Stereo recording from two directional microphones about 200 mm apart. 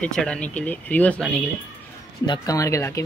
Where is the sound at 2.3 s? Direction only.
15° left (ahead or behind).